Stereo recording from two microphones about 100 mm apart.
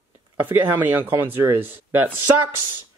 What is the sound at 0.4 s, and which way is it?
Speech, 20° right (ahead or behind).